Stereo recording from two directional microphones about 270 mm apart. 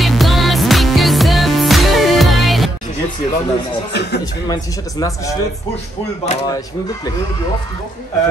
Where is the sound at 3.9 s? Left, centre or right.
Left.